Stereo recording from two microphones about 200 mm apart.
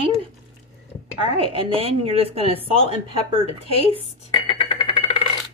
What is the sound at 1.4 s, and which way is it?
Speech, 30° right (ahead or behind).